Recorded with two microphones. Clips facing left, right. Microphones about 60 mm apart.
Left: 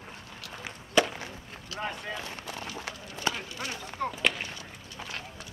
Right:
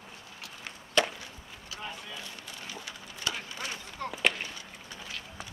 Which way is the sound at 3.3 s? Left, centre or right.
Left.